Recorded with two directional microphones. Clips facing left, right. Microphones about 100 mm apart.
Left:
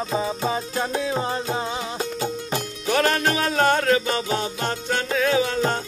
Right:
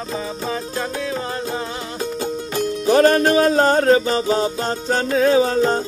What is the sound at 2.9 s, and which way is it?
Music, 35° right (ahead or behind).